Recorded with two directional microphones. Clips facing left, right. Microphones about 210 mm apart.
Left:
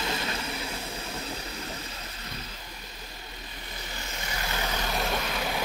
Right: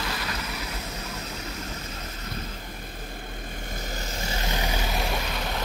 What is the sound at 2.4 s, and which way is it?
Vehicle, 50° right (ahead or behind).